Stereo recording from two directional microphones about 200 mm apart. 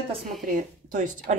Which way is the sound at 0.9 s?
40° right (ahead or behind).